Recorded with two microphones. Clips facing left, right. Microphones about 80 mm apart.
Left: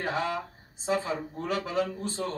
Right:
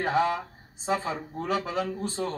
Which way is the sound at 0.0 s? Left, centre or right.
Centre.